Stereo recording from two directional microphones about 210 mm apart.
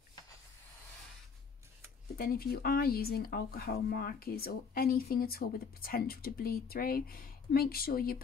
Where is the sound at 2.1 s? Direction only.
45° left (ahead or behind).